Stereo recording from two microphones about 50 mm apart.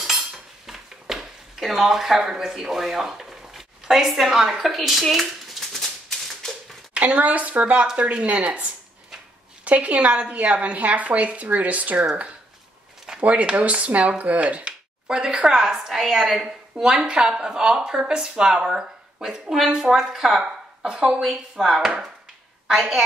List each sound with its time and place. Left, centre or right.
0.7 s a sound: centre
6.9 s a woman's voice: right
7.8 s speech: centre
13.2 s speech: right; by 20.3 s centre
20.3 s a woman's voice: centre
21.2 s speech: centre